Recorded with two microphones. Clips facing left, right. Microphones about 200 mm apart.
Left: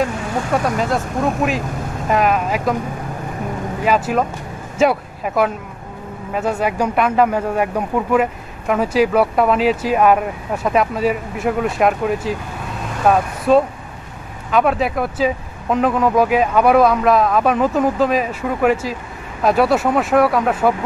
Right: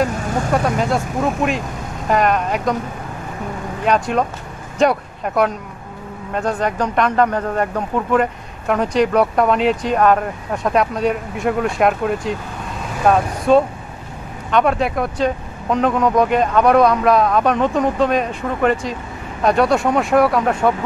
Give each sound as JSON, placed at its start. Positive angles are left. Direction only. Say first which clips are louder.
{"t": 0.7, "sound": "speech", "louder": "even", "side_deg": 0}
{"t": 3.8, "sound": "speech", "louder": "even", "side_deg": 5}